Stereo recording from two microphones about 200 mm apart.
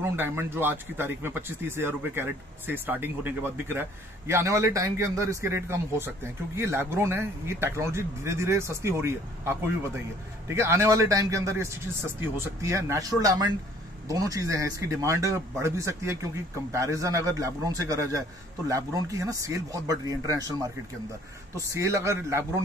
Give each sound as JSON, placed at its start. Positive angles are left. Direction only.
{"t": 0.0, "sound": "a man's voice", "side_deg": -10}
{"t": 21.5, "sound": "a man's voice", "side_deg": -15}